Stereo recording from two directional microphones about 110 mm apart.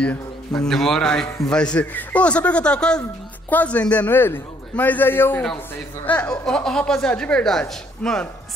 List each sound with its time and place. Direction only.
0.6 s a man's voice: 5° left (ahead or behind)